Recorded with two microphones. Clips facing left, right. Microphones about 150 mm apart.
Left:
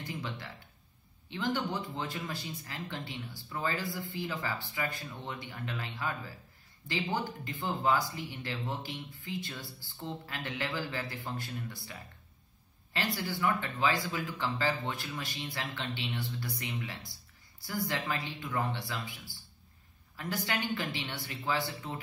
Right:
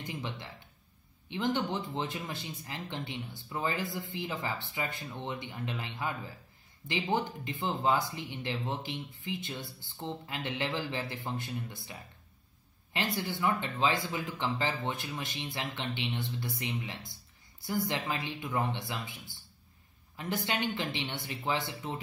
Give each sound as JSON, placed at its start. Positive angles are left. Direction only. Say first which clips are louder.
{"t": 0.0, "sound": "speech", "louder": "even", "side_deg": -20}